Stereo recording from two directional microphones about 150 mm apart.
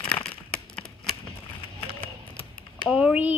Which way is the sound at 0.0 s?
5° left (ahead or behind).